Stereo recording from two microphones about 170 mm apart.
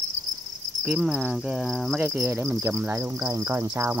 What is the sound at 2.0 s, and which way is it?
Cricket, 15° right (ahead or behind).